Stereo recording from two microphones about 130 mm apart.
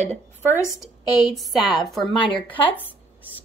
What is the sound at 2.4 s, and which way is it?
Speech, 40° left (ahead or behind).